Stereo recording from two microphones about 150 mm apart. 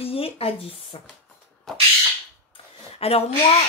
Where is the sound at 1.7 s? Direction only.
Centre (ahead or behind).